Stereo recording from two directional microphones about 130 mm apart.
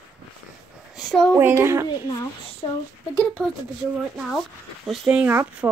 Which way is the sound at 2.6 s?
35° left (ahead or behind).